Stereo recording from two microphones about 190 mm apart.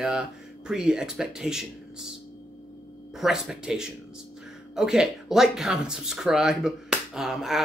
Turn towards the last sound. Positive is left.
turn(degrees=0)  # may be behind; listen again after turning